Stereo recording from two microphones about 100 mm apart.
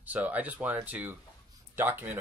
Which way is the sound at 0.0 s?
15° right (ahead or behind).